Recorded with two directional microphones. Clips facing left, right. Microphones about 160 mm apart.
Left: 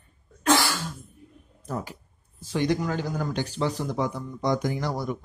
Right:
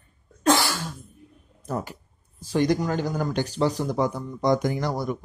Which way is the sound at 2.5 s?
40° right (ahead or behind).